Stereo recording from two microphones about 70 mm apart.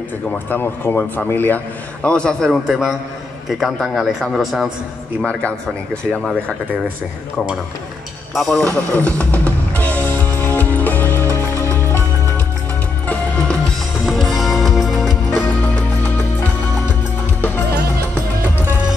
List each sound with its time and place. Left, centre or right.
0.3 s speech: left
2.0 s a man's voice: centre
2.6 s a man's voice: centre
5.2 s a man's voice: centre
8.4 s a man's voice: centre
8.6 s music: centre; by 11.7 s left
13.0 s music: left
14.0 s music: centre
15.3 s music: left